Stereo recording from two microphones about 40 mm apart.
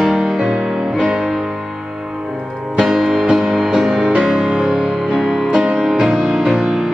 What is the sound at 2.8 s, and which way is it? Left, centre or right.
Music, centre.